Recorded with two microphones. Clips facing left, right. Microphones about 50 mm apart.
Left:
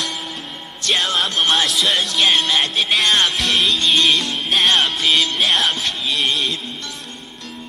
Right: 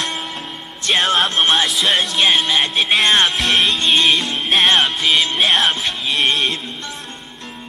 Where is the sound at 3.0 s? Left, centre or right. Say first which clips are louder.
Right 2 dB; right.